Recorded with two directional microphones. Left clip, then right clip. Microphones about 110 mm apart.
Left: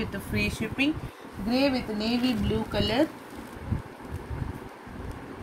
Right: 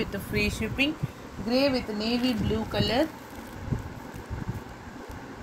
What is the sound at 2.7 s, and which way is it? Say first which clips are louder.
Speech: even; 50° right (ahead or behind).